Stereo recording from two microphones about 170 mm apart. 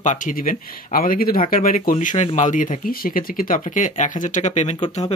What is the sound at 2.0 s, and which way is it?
Speech, 45° left (ahead or behind).